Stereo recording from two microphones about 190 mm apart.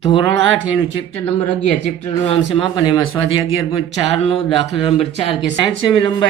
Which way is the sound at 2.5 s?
25° left (ahead or behind).